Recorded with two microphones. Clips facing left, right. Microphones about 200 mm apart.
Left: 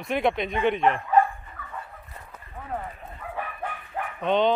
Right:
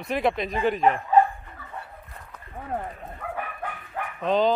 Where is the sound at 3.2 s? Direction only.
55° right (ahead or behind).